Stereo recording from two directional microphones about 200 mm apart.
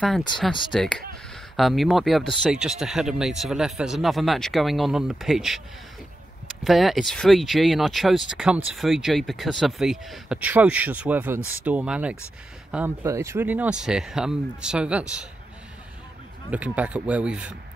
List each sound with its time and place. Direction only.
0.7 s speech: 5° left (ahead or behind)
6.6 s speech: centre (ahead or behind)
16.4 s speech: 5° right (ahead or behind)